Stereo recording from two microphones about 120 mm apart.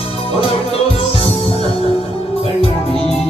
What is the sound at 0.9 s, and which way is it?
Music, 50° left (ahead or behind).